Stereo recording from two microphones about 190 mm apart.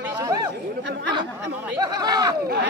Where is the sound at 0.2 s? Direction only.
15° right (ahead or behind).